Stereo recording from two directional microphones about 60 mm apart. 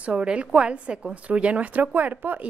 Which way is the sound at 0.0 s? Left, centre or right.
Centre.